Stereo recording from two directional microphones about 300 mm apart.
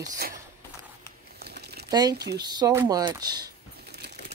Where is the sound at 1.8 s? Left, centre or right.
Centre.